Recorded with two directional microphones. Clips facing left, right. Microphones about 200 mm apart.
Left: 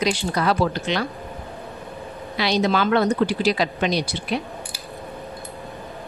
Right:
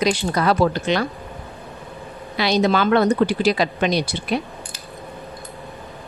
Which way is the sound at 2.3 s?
45° right (ahead or behind).